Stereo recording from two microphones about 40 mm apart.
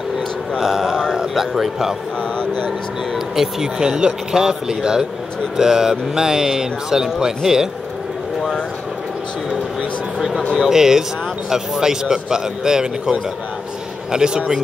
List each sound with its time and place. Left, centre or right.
0.6 s a man's voice: centre
3.3 s speech: centre
10.1 s a sound: centre
10.6 s speech: centre